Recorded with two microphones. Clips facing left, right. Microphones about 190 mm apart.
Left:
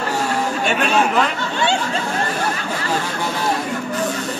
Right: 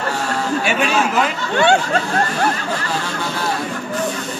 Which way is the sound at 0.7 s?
10° right (ahead or behind).